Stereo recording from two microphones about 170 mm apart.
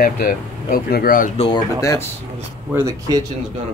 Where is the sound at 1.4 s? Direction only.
25° left (ahead or behind).